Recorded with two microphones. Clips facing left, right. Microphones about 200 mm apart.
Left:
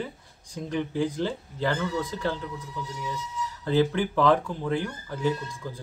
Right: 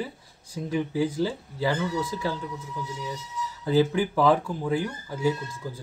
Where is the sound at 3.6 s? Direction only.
10° right (ahead or behind).